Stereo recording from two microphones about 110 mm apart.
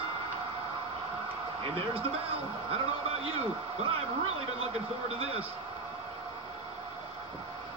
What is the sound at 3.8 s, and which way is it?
A man's voice, 60° right (ahead or behind).